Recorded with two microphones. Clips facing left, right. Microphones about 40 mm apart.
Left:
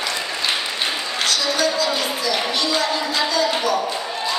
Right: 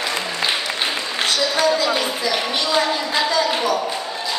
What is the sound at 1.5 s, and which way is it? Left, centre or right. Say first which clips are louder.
Speech: right 2 dB; right.